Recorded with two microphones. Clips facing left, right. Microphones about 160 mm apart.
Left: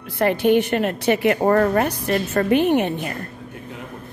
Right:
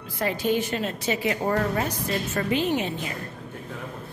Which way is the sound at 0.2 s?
65° left (ahead or behind).